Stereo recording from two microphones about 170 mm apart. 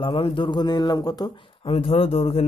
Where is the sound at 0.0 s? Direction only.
30° left (ahead or behind).